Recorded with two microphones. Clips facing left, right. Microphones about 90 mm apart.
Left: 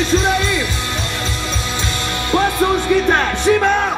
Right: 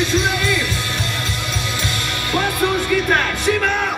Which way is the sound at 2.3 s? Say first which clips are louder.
Left 4 dB; 25° left (ahead or behind).